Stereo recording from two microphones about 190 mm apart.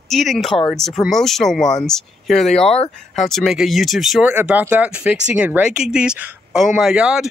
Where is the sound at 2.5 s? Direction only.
35° left (ahead or behind).